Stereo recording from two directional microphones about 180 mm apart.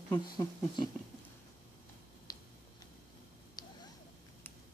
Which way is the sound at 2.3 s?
20° left (ahead or behind).